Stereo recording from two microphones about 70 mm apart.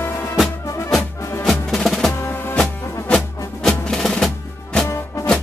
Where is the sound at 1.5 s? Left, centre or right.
Centre.